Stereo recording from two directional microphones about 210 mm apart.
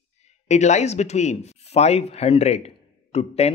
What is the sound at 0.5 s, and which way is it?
Speech, 35° left (ahead or behind).